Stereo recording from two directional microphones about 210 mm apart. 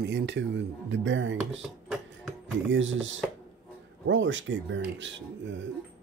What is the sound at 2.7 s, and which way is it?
Speech, 65° right (ahead or behind).